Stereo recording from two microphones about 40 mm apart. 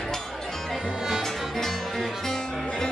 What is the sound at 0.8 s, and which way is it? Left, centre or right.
Music, centre.